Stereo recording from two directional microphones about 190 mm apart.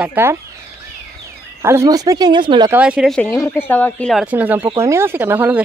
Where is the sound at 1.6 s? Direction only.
15° right (ahead or behind).